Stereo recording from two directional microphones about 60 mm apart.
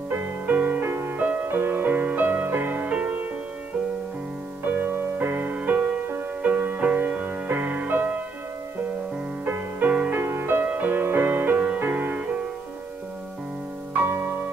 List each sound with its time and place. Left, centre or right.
0.5 s music: right
0.8 s music: right
1.1 s music: right
4.6 s music: right
5.6 s music: right
9.4 s music: right